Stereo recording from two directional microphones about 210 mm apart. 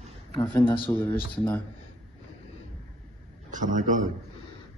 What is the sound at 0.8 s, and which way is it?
Speech, 10° left (ahead or behind).